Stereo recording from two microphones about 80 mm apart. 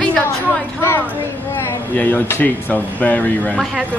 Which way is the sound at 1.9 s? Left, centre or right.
Left.